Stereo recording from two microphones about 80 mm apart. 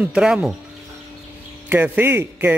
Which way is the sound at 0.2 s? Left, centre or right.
Centre.